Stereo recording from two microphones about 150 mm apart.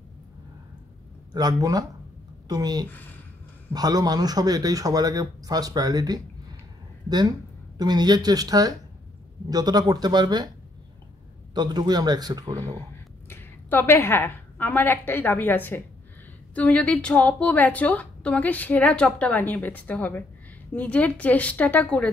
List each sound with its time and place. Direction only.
1.3 s a woman's voice: 25° right (ahead or behind)
2.9 s a woman's voice: 10° left (ahead or behind)
3.7 s speech: 25° right (ahead or behind)
11.5 s speech: 30° right (ahead or behind)
13.3 s a woman's voice: 15° left (ahead or behind)